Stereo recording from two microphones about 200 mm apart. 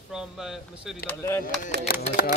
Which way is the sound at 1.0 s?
10° left (ahead or behind).